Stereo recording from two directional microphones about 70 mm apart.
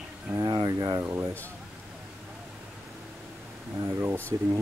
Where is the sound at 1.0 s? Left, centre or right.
Right.